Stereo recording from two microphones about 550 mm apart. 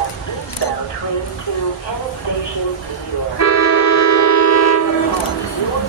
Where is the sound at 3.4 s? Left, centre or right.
Left.